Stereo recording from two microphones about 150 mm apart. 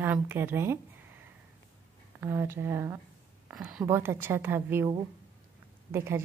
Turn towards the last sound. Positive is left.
turn(degrees=-15)  # may be behind; listen again after turning